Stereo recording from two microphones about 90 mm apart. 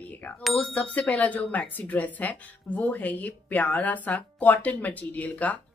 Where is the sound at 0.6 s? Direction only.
15° left (ahead or behind).